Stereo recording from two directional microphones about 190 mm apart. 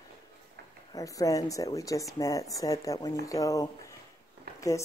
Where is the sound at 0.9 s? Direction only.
20° left (ahead or behind).